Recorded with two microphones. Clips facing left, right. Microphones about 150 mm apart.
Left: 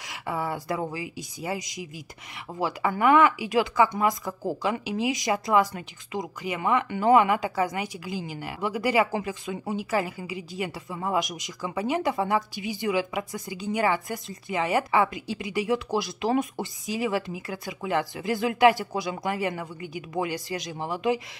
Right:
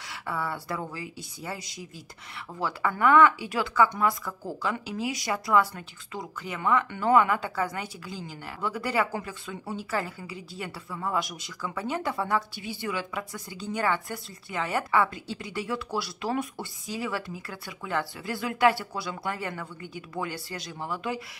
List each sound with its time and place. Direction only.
0.1 s a woman's voice: 15° left (ahead or behind)